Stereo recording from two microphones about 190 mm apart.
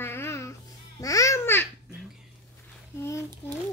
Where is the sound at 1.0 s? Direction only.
15° left (ahead or behind).